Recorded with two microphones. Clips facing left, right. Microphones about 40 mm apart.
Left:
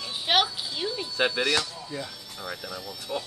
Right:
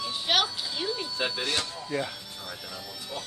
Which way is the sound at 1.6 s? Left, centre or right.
Right.